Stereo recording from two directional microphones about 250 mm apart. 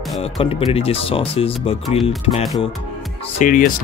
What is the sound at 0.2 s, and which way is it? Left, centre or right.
Speech, left.